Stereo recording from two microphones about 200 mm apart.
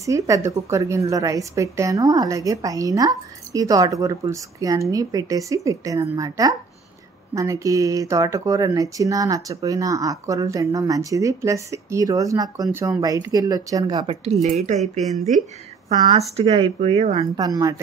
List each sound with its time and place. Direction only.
0.0 s speech: 15° right (ahead or behind); by 14.8 s 35° right (ahead or behind)
14.8 s a woman's voice: centre (ahead or behind)
15.9 s speech: 25° right (ahead or behind)
17.4 s speech: 20° right (ahead or behind)